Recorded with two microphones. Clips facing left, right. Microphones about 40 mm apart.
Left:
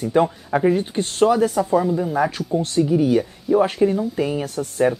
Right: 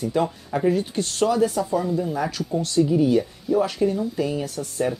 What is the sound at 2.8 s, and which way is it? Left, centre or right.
A woman's voice, centre.